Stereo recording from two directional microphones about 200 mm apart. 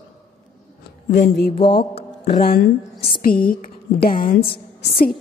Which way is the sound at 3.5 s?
45° left (ahead or behind).